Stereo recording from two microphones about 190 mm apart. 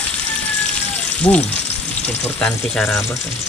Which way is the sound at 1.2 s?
20° left (ahead or behind).